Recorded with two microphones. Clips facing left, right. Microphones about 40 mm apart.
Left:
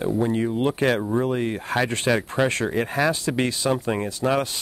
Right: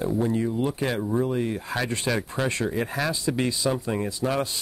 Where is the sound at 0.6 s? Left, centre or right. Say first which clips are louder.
Left 5 dB; left.